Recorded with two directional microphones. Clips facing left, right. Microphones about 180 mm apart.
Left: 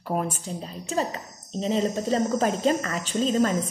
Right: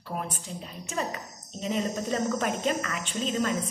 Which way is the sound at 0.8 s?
30° left (ahead or behind).